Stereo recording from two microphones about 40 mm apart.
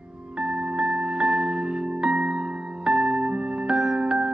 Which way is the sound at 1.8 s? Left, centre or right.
Right.